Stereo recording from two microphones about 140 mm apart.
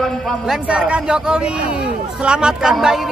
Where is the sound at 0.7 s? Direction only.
10° right (ahead or behind).